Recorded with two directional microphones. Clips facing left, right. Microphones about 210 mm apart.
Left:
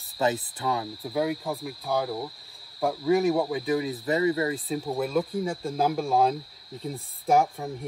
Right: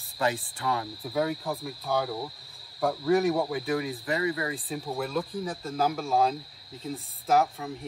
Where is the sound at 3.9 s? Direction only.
30° left (ahead or behind).